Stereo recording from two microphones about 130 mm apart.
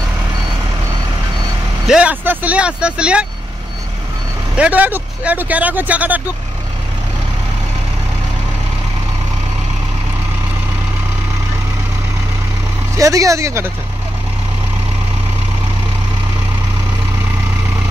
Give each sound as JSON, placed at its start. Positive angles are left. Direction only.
{"t": 1.9, "sound": "speech", "side_deg": -10}
{"t": 4.6, "sound": "speech", "side_deg": -10}
{"t": 12.9, "sound": "speech", "side_deg": -25}